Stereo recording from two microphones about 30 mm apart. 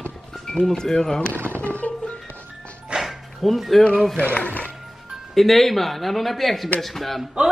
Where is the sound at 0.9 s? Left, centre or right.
Centre.